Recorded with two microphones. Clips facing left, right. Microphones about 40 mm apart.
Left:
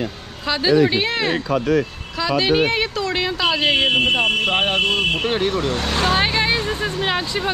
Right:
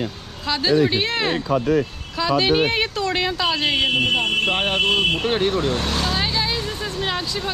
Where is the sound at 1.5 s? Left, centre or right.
Left.